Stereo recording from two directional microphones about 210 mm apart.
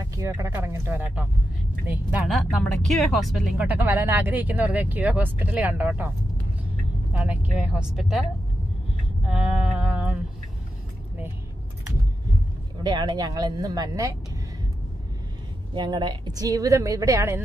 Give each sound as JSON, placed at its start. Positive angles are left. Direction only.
{"t": 0.0, "sound": "speech", "side_deg": -15}
{"t": 9.2, "sound": "sheep", "side_deg": -5}
{"t": 12.8, "sound": "speech", "side_deg": -20}
{"t": 15.7, "sound": "speech", "side_deg": -20}